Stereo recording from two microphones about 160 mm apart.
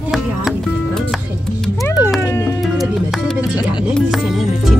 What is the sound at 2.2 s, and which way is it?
Music, 15° left (ahead or behind).